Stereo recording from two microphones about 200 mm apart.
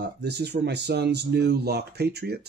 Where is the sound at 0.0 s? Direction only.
55° right (ahead or behind).